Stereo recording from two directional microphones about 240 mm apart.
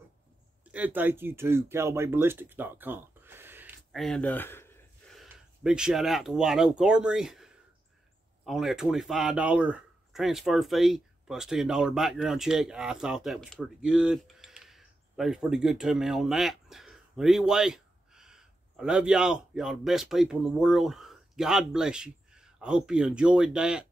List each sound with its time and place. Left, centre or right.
0.7 s speech: centre